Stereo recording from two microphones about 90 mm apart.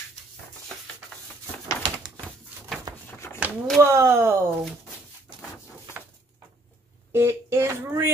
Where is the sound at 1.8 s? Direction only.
50° right (ahead or behind).